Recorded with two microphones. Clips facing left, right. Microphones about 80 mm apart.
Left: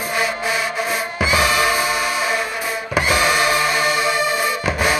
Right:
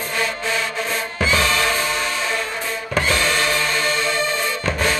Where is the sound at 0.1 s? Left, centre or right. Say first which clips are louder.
Left 2 dB; centre.